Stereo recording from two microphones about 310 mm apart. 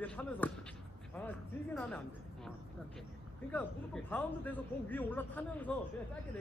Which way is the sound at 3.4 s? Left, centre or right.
Centre.